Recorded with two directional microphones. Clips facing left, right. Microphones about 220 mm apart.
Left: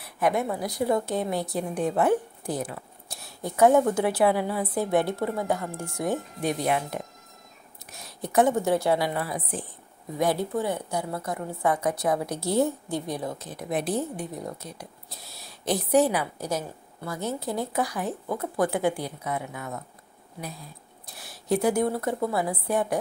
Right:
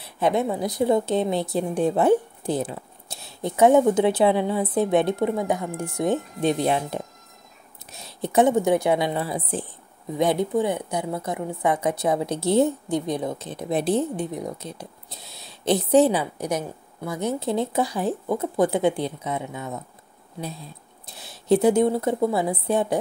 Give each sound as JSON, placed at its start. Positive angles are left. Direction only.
{"t": 0.0, "sound": "a woman's voice", "side_deg": -25}